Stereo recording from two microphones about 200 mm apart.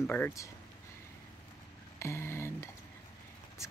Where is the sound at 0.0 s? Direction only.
10° left (ahead or behind).